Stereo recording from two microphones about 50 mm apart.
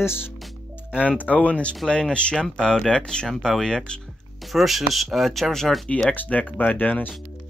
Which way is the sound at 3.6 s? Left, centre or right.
Centre.